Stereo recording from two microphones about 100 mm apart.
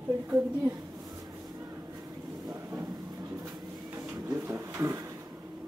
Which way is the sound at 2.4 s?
35° right (ahead or behind).